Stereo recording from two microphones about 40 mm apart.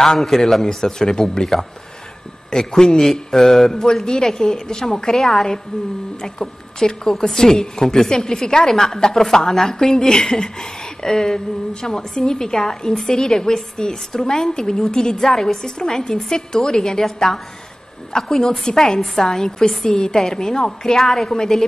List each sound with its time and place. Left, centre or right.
0.0 s a woman's voice: centre